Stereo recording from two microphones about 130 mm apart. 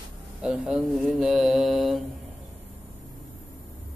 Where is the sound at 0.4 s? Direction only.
5° right (ahead or behind).